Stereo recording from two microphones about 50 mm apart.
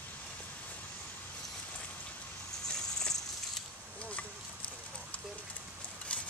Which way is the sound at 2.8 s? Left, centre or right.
Centre.